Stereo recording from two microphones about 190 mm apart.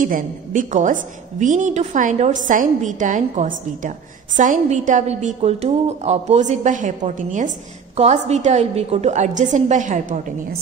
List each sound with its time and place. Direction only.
0.0 s a woman's voice: 45° right (ahead or behind)